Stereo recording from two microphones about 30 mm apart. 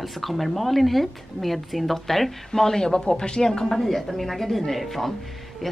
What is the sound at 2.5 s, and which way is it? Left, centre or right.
Speech, left.